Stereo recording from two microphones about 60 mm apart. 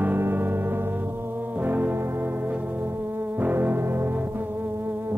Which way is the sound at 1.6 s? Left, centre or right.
Right.